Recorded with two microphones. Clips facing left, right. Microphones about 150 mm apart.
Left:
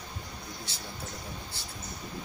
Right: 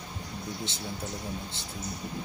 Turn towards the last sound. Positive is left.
turn(degrees=-20)  # may be behind; listen again after turning